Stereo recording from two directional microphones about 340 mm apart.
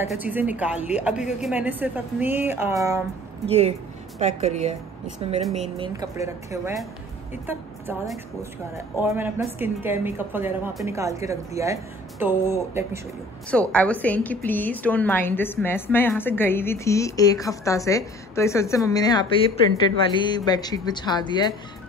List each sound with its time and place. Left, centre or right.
0.0 s a woman's voice: centre
5.5 s a woman's voice: centre
13.5 s a woman's voice: centre